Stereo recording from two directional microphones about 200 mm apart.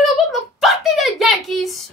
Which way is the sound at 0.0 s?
Centre (ahead or behind).